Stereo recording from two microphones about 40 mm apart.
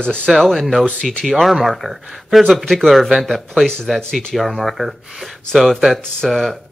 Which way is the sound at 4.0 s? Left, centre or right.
Centre.